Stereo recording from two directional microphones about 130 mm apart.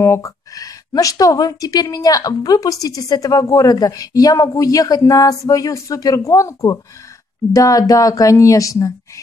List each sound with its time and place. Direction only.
0.0 s a woman's voice: 20° left (ahead or behind)